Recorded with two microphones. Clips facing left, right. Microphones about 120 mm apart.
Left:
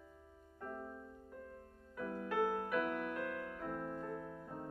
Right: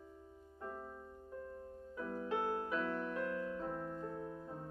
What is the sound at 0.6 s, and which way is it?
Music, 20° right (ahead or behind).